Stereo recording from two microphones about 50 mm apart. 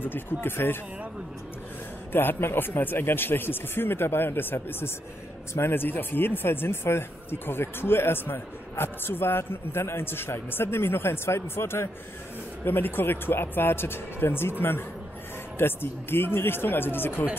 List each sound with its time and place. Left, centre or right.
0.0 s speech: left
2.1 s speech: left